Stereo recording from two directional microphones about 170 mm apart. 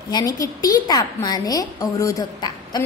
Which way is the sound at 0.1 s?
20° left (ahead or behind).